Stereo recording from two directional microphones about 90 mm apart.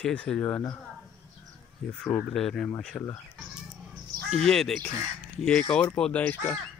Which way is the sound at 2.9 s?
35° left (ahead or behind).